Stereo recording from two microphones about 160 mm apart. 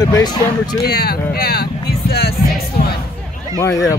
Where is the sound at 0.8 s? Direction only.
80° left.